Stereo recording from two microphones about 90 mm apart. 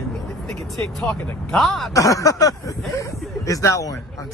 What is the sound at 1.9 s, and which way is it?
Speech, 40° left (ahead or behind).